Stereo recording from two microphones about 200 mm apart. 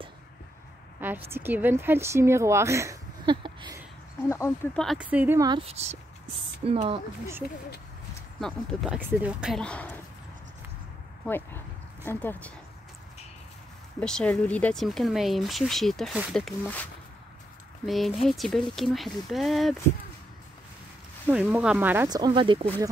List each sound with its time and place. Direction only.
1.0 s a woman's voice: 10° right (ahead or behind)
4.2 s speech: 10° left (ahead or behind)
4.7 s speech: centre (ahead or behind)
5.5 s speech: 30° right (ahead or behind)
8.4 s speech: centre (ahead or behind)
11.2 s speech: 10° left (ahead or behind)
13.9 s speech: 5° left (ahead or behind)
21.3 s speech: 5° right (ahead or behind); by 22.8 s 25° right (ahead or behind)